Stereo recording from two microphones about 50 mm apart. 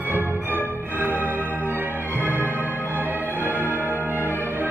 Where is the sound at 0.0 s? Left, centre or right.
Right.